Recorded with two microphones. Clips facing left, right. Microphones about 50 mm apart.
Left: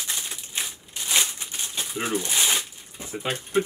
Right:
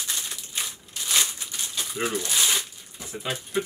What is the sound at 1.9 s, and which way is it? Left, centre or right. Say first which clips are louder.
Shuffling cards: left 1 dB; centre.